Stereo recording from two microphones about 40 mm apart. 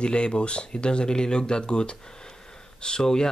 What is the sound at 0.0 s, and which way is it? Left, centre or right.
Speech, left.